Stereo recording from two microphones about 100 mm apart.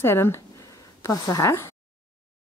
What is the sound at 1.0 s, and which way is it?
Speech, 35° left (ahead or behind).